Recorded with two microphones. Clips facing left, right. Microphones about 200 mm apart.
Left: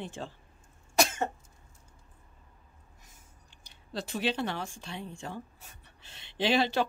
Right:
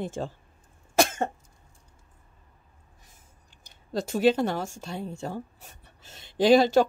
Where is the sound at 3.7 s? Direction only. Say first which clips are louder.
Right 7 dB; 45° right (ahead or behind).